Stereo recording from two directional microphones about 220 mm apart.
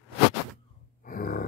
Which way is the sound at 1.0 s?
40° left (ahead or behind).